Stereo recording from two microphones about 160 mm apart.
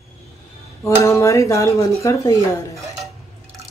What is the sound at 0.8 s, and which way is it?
Speech, 20° left (ahead or behind).